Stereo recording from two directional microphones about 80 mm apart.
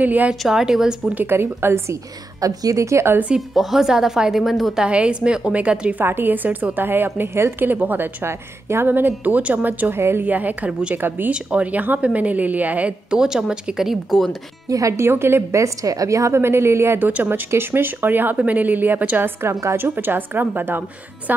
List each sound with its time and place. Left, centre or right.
0.0 s a woman's voice: right
0.4 s a woman's voice: centre
1.1 s a woman's voice: right
2.4 s a woman's voice: right
3.3 s a woman's voice: centre
4.8 s a woman's voice: centre
11.0 s a woman's voice: right; by 14.3 s centre
14.7 s a woman's voice: right